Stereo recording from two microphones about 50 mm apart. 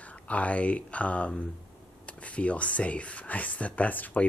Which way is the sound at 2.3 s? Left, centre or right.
Left.